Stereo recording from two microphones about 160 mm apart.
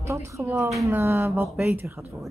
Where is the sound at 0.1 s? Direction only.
15° right (ahead or behind).